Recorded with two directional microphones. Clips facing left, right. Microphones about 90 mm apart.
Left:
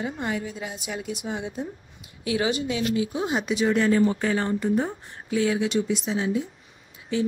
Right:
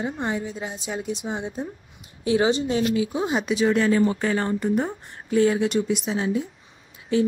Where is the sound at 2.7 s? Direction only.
35° right (ahead or behind).